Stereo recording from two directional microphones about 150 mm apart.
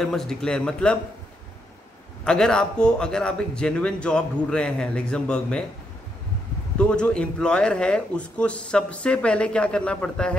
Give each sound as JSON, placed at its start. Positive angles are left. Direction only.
{"t": 0.0, "sound": "a man's voice", "side_deg": 5}
{"t": 2.2, "sound": "a man's voice", "side_deg": 5}
{"t": 6.8, "sound": "speech", "side_deg": 5}